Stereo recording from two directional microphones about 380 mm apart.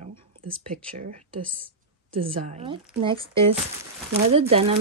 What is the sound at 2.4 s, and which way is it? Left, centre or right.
Speech, centre.